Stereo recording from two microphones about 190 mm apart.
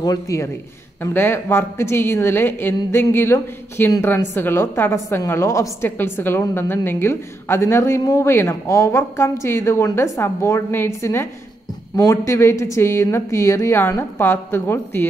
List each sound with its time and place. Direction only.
0.0 s a woman's voice: 15° left (ahead or behind)